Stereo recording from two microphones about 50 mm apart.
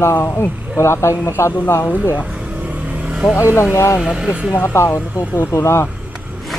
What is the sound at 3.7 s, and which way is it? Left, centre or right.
Speech, left.